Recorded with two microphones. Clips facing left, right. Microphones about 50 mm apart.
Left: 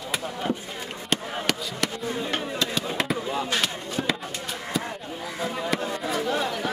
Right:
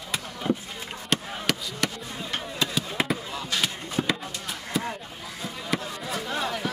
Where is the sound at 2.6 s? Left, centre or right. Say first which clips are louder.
Right 3 dB; centre.